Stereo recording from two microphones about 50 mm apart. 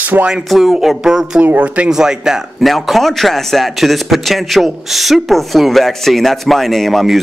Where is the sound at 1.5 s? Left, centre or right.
Right.